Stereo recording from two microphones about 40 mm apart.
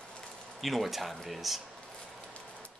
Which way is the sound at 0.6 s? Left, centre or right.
Centre.